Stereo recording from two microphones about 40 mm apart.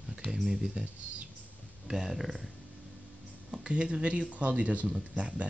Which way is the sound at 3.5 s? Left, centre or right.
Right.